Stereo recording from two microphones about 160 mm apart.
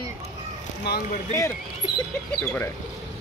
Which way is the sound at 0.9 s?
90° left.